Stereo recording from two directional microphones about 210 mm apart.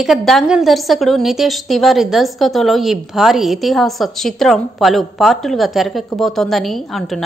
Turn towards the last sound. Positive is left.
turn(degrees=0)  # may be behind; listen again after turning